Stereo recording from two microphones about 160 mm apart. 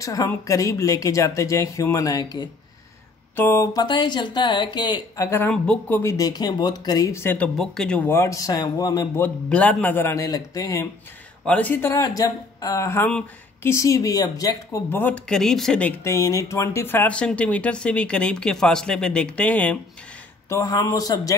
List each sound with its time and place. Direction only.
0.0 s a man's voice: 20° left (ahead or behind)
3.8 s a man's voice: 30° left (ahead or behind); by 8.0 s 5° left (ahead or behind)
8.1 s a man's voice: 20° left (ahead or behind)
11.4 s speech: 10° left (ahead or behind)
16.0 s speech: 20° left (ahead or behind)
20.4 s a man's voice: 20° left (ahead or behind)